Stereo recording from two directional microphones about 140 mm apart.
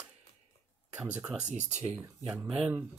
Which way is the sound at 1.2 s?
10° right (ahead or behind).